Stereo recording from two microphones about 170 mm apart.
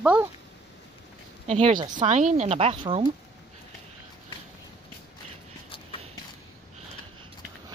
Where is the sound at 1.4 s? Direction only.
35° right (ahead or behind).